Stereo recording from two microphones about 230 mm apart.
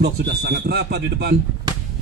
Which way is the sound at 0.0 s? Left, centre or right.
Right.